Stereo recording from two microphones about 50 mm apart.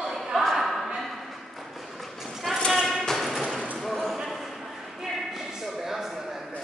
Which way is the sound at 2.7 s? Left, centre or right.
Centre.